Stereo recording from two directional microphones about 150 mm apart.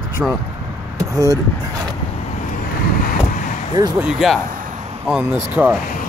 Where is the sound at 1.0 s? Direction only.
20° right (ahead or behind).